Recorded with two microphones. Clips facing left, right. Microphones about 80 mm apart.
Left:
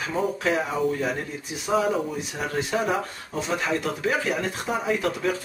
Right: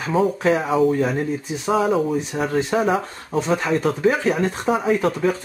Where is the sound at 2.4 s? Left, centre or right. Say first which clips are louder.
Right 5 dB; right.